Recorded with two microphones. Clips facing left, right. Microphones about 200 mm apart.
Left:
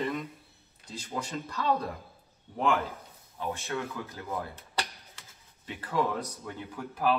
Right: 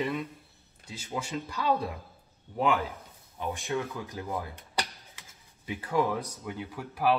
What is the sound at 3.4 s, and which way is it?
Speech, 15° right (ahead or behind).